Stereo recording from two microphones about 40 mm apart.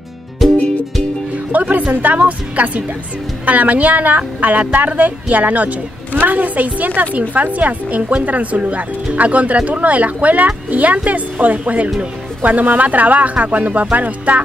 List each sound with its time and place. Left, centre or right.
0.4 s music: centre
1.5 s speech: right